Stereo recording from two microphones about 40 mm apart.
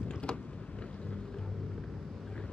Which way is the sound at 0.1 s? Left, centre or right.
Left.